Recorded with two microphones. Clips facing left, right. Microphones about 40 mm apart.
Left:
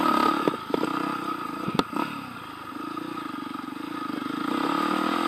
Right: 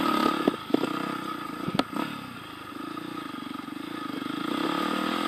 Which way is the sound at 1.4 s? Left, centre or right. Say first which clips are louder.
Even; left.